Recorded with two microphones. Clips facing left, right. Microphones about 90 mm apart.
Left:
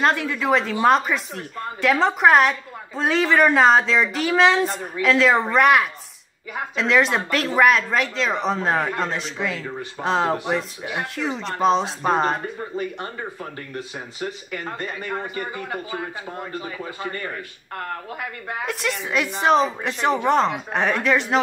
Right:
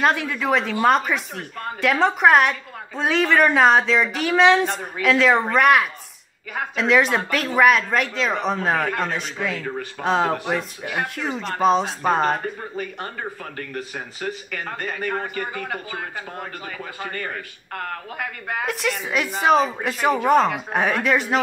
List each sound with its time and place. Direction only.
0.0 s a woman's voice: centre (ahead or behind)
12.7 s speech: 30° left (ahead or behind)
13.6 s speech: 50° right (ahead or behind)
17.0 s speech: 50° right (ahead or behind)
18.7 s a woman's voice: centre (ahead or behind)